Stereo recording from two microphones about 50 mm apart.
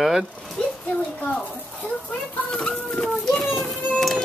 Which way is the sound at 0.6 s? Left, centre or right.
Centre.